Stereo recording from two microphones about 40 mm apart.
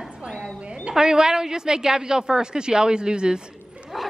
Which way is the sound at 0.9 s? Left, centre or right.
Centre.